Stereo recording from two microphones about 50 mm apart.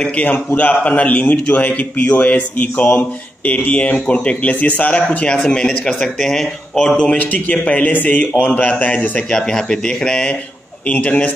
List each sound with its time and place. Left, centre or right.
0.0 s speech: left; by 7.0 s centre
7.2 s speech: left
9.3 s speech: centre
10.9 s speech: left